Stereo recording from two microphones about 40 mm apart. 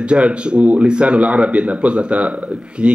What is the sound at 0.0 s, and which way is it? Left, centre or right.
Speech, right.